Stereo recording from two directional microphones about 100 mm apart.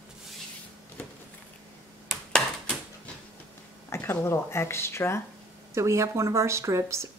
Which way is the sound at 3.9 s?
25° left (ahead or behind).